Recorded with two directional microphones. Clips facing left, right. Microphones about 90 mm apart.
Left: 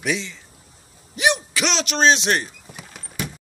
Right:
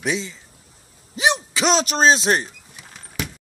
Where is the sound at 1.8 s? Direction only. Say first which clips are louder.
Left 1 dB; 40° right (ahead or behind).